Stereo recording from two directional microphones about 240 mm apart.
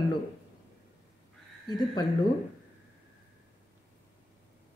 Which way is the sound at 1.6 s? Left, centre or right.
Centre.